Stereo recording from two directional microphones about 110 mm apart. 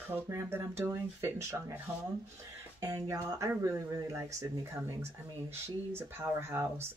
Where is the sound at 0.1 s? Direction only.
20° right (ahead or behind).